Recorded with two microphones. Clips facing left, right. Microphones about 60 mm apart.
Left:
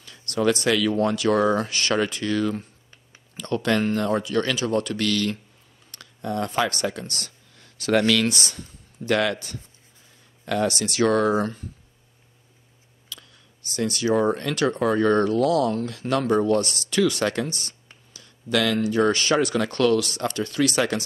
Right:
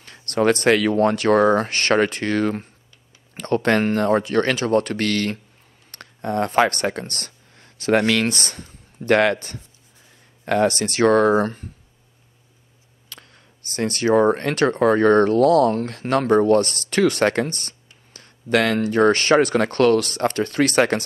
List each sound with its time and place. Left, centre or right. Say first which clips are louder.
0.0 s speech: right 3 dB; right
13.1 s speech: even; right